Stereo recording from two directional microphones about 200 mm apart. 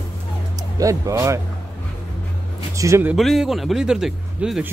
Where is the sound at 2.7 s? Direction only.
15° right (ahead or behind).